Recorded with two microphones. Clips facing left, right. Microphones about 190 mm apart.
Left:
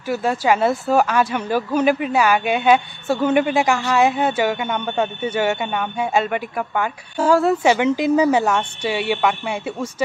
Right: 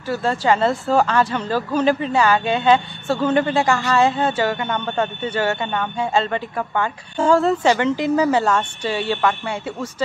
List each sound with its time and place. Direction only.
0.1 s speech: 15° left (ahead or behind)
7.6 s speech: 15° left (ahead or behind)